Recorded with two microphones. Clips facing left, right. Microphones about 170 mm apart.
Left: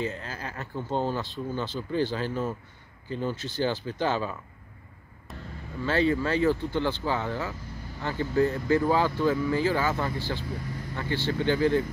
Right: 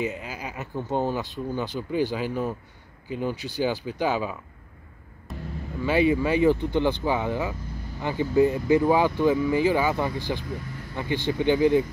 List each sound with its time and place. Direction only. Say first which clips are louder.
0.0 s speech: right 2 dB; 15° right (ahead or behind)
5.3 s vehicle: right 5 dB; centre (ahead or behind)
5.9 s speech: right 3 dB; 15° right (ahead or behind)